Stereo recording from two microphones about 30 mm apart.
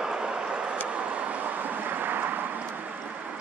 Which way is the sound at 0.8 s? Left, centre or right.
Right.